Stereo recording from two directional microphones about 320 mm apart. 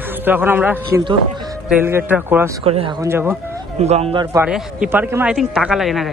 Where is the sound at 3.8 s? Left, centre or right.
Centre.